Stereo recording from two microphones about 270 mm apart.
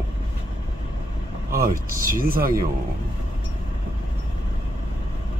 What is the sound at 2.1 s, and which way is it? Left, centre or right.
Speech, right.